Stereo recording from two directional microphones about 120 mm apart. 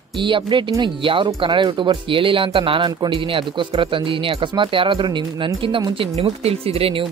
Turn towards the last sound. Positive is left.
turn(degrees=-50)  # may be behind; listen again after turning